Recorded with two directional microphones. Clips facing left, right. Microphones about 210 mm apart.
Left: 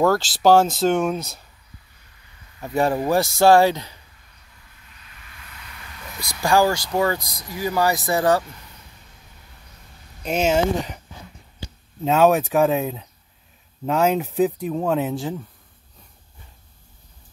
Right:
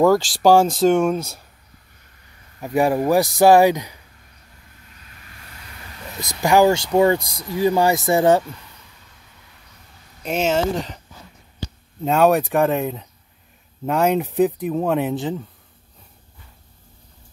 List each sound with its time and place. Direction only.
0.0 s speech: 15° right (ahead or behind)
0.7 s speech: 5° left (ahead or behind)
1.1 s speech: 10° right (ahead or behind)
2.6 s speech: 15° right (ahead or behind)
4.9 s a sound: 40° right (ahead or behind); by 6.9 s 25° right (ahead or behind)
6.9 s speech: 25° right (ahead or behind)
10.3 s speech: 5° left (ahead or behind)
12.0 s speech: centre (ahead or behind)